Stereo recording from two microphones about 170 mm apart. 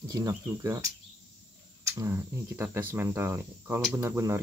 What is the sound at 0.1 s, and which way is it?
Speech, 20° right (ahead or behind).